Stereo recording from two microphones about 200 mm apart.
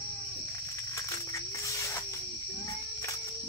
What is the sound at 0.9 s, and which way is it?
Cricket, 15° left (ahead or behind).